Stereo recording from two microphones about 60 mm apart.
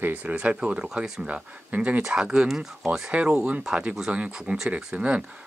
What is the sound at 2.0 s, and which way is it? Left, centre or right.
Speech, centre.